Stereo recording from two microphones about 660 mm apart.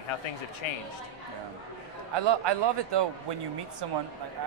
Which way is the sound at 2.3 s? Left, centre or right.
Right.